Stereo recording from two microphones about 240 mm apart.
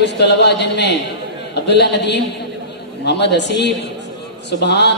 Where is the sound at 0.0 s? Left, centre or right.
Left.